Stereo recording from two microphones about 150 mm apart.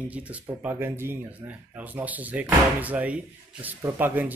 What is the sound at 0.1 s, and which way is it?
Speech, 10° right (ahead or behind).